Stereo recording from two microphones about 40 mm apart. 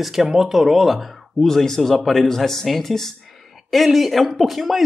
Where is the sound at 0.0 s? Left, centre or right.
Centre.